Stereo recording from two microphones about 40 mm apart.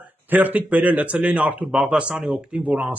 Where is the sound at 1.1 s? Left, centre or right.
Right.